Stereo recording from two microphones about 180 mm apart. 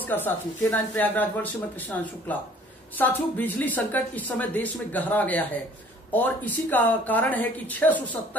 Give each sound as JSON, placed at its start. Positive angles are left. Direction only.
{"t": 0.0, "sound": "speech", "side_deg": 10}